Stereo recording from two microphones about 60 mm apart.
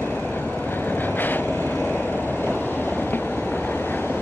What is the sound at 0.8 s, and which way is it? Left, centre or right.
Vehicle, left.